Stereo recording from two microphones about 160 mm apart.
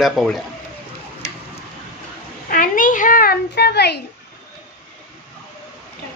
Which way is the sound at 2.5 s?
60° left (ahead or behind).